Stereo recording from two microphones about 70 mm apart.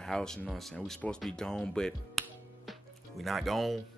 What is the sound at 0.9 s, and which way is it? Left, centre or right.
Speech, centre.